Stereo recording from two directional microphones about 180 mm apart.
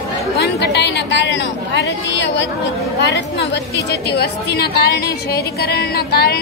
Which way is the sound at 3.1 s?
65° left (ahead or behind).